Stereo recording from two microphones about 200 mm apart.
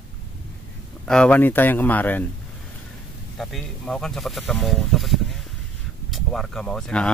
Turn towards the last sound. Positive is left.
turn(degrees=5)  # may be behind; listen again after turning